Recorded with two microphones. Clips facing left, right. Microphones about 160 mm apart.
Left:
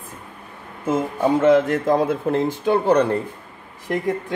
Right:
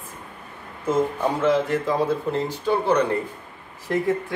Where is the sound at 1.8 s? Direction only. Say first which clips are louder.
Left 4 dB; 50° left (ahead or behind).